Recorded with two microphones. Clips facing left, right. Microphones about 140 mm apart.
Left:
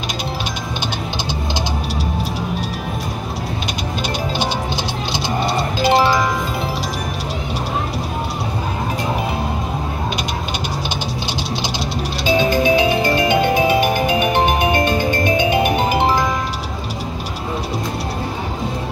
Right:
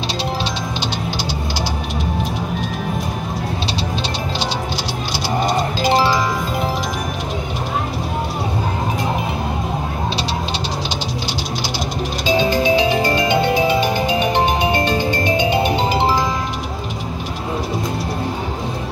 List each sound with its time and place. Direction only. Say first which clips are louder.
12.4 s music: left 1 dB; 15° left (ahead or behind)